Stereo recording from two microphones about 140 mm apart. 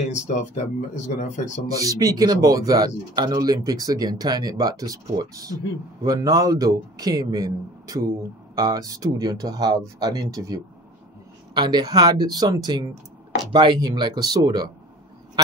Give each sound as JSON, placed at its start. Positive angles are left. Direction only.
{"t": 0.1, "sound": "speech", "side_deg": 60}
{"t": 1.7, "sound": "speech", "side_deg": -25}